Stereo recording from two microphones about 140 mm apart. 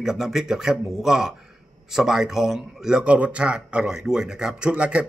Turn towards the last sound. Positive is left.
turn(degrees=-10)  # may be behind; listen again after turning